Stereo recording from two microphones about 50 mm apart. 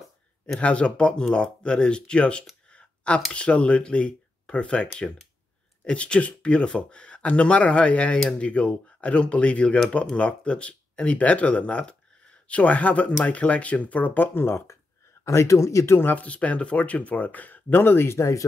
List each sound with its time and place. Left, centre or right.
0.6 s speech: left
2.7 s a sound: left
3.3 s speech: left
11.9 s a sound: left
13.2 s speech: left
15.2 s speech: left
16.2 s speech: left